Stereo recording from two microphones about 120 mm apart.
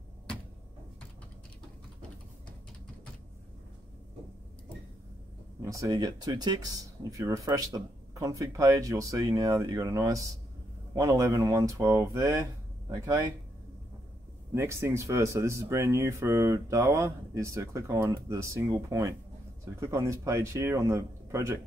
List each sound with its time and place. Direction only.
5.6 s speech: 30° right (ahead or behind)
14.5 s speech: 20° right (ahead or behind)